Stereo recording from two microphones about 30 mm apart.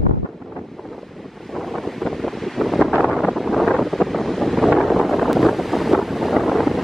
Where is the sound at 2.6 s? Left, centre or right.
Centre.